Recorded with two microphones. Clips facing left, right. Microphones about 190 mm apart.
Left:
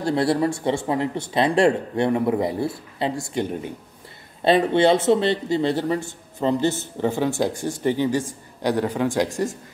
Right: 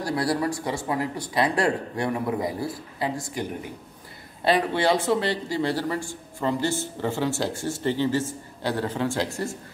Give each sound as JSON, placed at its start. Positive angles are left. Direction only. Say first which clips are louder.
{"t": 0.0, "sound": "a man's voice", "louder": "left 5 dB", "side_deg": 25}